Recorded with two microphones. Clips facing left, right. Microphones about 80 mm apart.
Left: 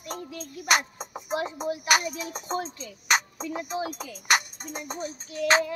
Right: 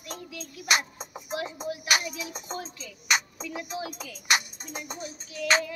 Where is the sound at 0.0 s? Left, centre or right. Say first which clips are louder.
Left 3 dB; left.